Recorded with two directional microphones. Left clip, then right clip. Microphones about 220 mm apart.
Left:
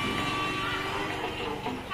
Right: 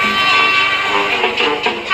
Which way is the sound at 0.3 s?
45° right (ahead or behind).